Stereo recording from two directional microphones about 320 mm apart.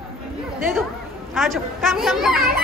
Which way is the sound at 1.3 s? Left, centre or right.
Centre.